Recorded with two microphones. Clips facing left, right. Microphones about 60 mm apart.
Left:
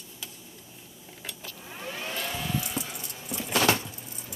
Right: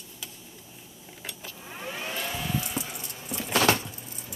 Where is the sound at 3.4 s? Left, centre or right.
Right.